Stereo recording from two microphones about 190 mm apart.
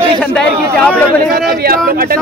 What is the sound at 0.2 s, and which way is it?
Chatter, 5° left (ahead or behind).